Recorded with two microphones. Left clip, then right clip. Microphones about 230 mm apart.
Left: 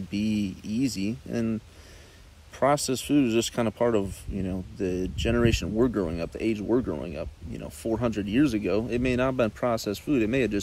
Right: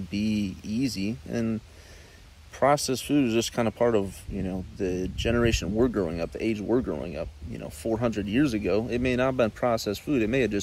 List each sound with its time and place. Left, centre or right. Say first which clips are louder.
0.1 s speech: even; centre